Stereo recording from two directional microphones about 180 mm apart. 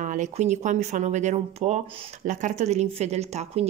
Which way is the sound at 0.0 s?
45° right (ahead or behind).